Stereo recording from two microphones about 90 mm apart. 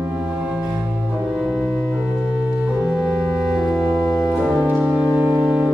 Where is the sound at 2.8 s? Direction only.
5° right (ahead or behind).